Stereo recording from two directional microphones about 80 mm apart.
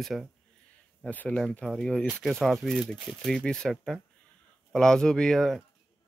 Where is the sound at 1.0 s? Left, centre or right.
Centre.